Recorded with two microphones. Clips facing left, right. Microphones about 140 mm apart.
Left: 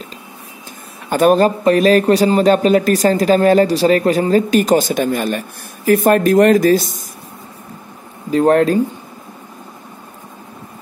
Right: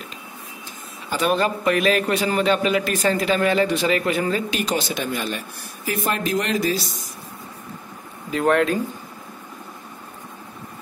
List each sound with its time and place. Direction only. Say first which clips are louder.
1.1 s a man's voice: left 9 dB; 45° left (ahead or behind)
8.3 s a man's voice: left 7 dB; 35° left (ahead or behind)